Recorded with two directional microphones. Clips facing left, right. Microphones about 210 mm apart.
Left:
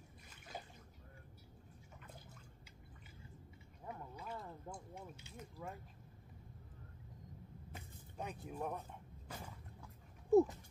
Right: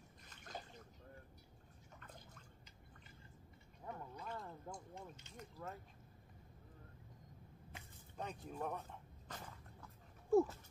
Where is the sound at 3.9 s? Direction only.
5° left (ahead or behind).